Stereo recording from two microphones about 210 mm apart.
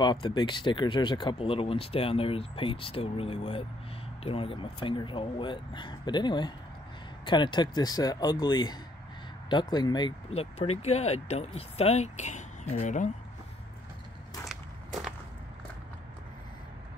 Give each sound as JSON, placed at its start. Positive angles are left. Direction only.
{"t": 0.0, "sound": "speech", "side_deg": 20}
{"t": 14.4, "sound": "crushing", "side_deg": 0}